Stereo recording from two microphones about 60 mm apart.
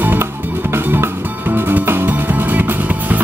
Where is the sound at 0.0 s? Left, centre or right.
Right.